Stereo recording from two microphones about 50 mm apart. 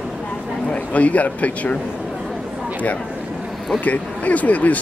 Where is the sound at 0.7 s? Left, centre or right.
Left.